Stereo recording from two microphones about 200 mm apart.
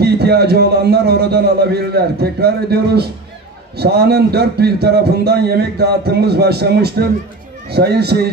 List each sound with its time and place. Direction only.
0.0 s a man's voice: 55° right (ahead or behind)